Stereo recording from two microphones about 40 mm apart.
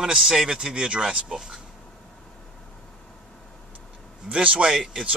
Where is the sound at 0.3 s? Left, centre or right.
Centre.